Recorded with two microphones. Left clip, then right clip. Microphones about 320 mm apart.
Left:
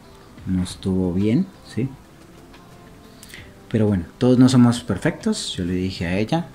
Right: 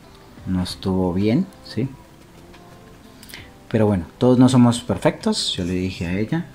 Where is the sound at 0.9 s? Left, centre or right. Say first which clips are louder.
Right 2 dB; right.